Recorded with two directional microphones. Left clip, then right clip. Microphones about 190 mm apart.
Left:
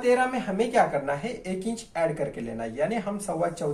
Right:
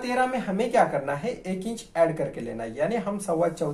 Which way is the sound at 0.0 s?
20° right (ahead or behind).